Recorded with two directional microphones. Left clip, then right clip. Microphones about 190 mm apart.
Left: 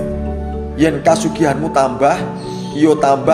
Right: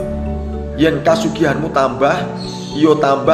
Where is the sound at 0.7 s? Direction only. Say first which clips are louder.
Even; 45° left (ahead or behind).